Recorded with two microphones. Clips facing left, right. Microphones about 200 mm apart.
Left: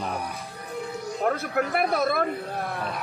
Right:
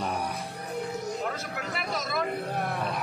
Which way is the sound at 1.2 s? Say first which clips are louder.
Left 8 dB; 55° left (ahead or behind).